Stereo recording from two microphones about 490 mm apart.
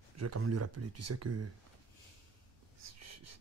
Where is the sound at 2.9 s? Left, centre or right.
Right.